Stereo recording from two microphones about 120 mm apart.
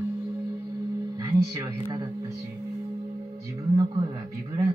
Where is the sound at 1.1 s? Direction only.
25° right (ahead or behind).